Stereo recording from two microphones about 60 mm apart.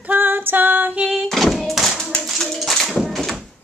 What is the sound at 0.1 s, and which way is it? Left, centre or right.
Female singing, right.